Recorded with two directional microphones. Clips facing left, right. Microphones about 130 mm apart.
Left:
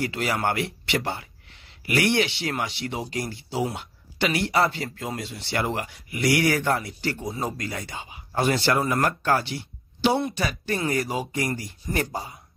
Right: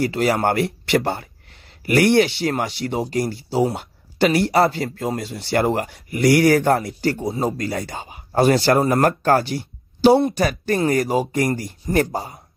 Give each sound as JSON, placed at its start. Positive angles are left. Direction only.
{"t": 0.0, "sound": "speech", "side_deg": -40}
{"t": 7.2, "sound": "speech", "side_deg": -30}